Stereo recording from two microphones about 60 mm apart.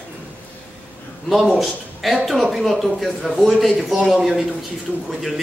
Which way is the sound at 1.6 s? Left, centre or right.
Centre.